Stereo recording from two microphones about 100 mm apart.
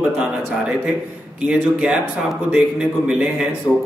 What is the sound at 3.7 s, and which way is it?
Speech, 40° left (ahead or behind).